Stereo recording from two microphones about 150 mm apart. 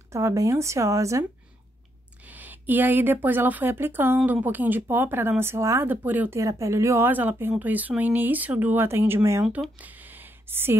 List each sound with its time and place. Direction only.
0.1 s speech: 20° right (ahead or behind)
2.2 s a woman's voice: 10° right (ahead or behind)
9.6 s a sound: 10° right (ahead or behind)